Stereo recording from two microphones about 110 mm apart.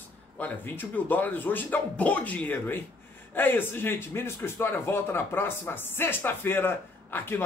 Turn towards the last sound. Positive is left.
turn(degrees=20)  # may be behind; listen again after turning